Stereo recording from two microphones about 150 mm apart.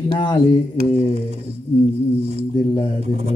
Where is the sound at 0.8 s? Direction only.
90° right.